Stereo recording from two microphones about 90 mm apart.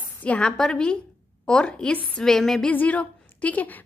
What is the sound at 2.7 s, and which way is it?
A woman's voice, 15° left (ahead or behind).